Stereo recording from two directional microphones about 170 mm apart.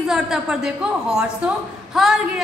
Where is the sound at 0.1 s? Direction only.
5° right (ahead or behind).